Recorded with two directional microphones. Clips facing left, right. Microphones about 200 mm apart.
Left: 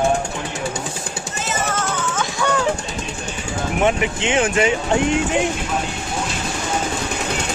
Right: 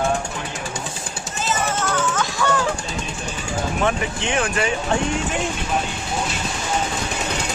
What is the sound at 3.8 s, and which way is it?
Speech, 20° left (ahead or behind).